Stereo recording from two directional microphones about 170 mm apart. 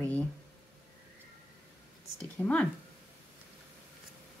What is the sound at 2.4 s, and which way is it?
Speech, 15° left (ahead or behind).